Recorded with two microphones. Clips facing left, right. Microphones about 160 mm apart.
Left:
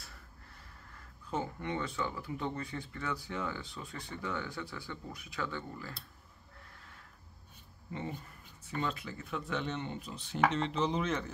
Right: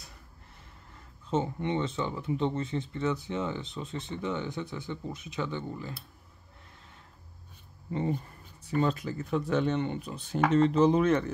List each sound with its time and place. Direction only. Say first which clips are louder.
1.3 s speech: right 7 dB; 25° right (ahead or behind)
7.9 s speech: right 9 dB; 35° right (ahead or behind)
9.8 s speech: right 8 dB; 60° right (ahead or behind)